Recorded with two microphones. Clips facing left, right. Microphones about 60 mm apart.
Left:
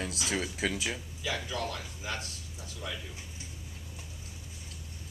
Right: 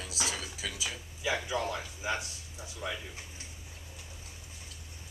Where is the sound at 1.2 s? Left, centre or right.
Centre.